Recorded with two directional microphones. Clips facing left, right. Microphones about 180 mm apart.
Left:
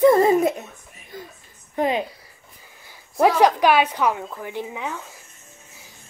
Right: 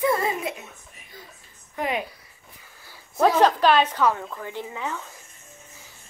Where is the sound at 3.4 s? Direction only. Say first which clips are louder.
Left 1 dB; 10° left (ahead or behind).